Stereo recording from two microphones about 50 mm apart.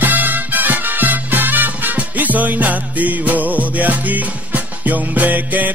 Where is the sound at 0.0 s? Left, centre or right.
Right.